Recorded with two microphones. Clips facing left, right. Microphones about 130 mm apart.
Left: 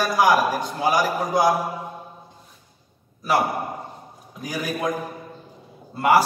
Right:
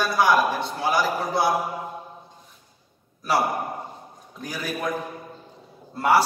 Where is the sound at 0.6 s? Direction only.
15° left (ahead or behind).